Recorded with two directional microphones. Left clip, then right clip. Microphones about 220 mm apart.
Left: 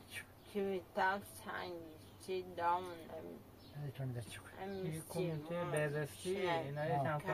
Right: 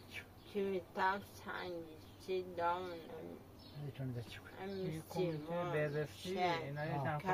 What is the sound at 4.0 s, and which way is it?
Speech, 20° left (ahead or behind).